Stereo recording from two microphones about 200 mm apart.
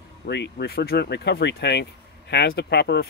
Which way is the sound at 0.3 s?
60° left (ahead or behind).